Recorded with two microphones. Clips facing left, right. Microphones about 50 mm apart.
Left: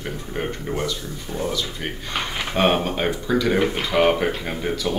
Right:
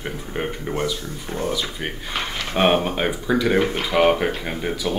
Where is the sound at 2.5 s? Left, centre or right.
Centre.